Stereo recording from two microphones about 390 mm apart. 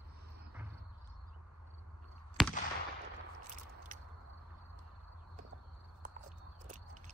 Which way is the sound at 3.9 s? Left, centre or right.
Centre.